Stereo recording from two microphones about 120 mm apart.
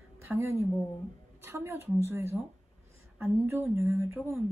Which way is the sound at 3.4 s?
20° right (ahead or behind).